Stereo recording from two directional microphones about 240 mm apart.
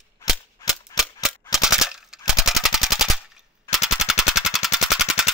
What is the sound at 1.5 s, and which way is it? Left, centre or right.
Gunshot, centre.